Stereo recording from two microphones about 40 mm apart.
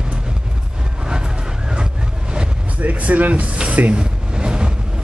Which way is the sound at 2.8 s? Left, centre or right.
Right.